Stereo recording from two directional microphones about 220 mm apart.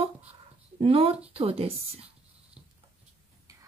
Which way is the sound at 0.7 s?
25° right (ahead or behind).